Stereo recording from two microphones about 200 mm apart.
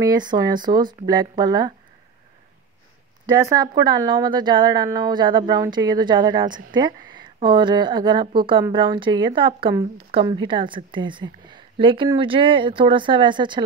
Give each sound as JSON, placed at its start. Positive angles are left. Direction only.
{"t": 0.0, "sound": "a woman's voice", "side_deg": -20}
{"t": 3.3, "sound": "a woman's voice", "side_deg": -15}